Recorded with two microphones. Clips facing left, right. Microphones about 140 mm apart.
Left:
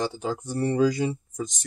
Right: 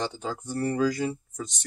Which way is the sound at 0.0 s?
10° left (ahead or behind).